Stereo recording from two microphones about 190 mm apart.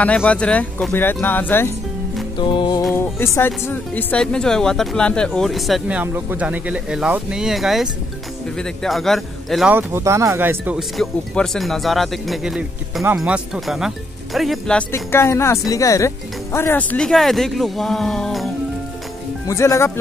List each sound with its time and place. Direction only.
0.0 s speech: 5° left (ahead or behind)
2.3 s music: 25° left (ahead or behind)
2.9 s speech: 10° left (ahead or behind)
19.4 s speech: 15° left (ahead or behind)